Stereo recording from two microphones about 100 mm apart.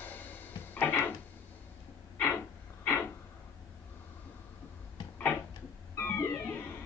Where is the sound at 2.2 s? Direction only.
20° left (ahead or behind).